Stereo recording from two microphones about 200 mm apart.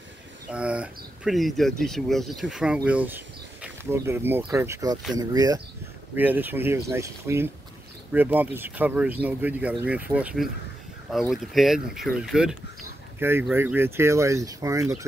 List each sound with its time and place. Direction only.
0.5 s speech: 5° right (ahead or behind)